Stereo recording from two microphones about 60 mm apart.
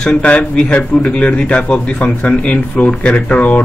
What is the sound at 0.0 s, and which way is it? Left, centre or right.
Speech, centre.